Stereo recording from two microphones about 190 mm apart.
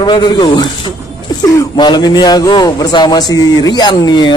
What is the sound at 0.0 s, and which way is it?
A man's voice, 20° left (ahead or behind).